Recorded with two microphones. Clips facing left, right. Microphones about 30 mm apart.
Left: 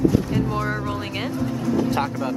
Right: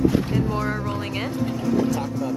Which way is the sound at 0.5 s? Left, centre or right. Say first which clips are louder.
Left 1 dB; centre.